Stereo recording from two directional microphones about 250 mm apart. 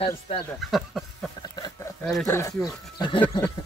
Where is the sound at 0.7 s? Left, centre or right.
Centre.